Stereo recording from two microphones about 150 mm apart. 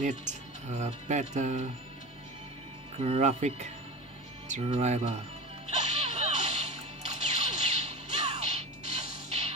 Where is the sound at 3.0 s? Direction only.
45° right (ahead or behind).